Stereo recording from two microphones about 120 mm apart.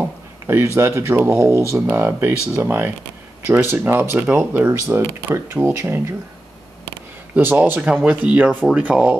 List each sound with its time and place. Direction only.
0.0 s speech: 20° right (ahead or behind)
7.3 s speech: 15° right (ahead or behind)